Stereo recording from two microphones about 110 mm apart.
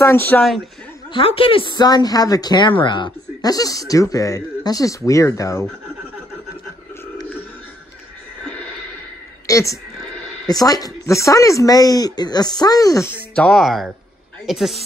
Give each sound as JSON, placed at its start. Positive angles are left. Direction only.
{"t": 0.0, "sound": "speech", "side_deg": 20}
{"t": 1.1, "sound": "speech", "side_deg": 55}
{"t": 9.5, "sound": "a woman's voice", "side_deg": 30}
{"t": 13.3, "sound": "speech", "side_deg": 10}
{"t": 13.6, "sound": "a woman's voice", "side_deg": 0}